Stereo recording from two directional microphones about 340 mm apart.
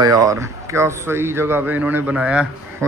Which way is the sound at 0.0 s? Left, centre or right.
Centre.